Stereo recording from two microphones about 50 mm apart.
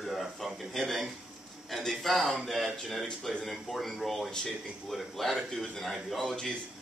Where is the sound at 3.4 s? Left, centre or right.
Centre.